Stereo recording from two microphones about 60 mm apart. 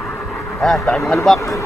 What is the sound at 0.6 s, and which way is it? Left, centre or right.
Speech, centre.